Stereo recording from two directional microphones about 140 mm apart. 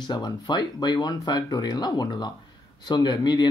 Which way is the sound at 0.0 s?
30° left (ahead or behind).